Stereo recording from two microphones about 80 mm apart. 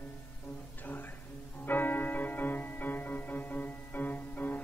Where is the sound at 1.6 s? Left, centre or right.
Left.